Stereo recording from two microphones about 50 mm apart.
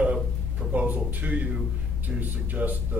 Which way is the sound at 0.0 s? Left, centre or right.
Right.